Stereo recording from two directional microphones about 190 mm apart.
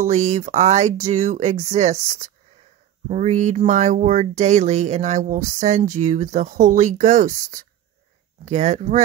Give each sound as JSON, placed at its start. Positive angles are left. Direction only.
{"t": 0.0, "sound": "speech", "side_deg": -35}